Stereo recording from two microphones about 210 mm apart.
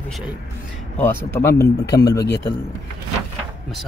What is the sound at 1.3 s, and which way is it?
Speech, 15° left (ahead or behind).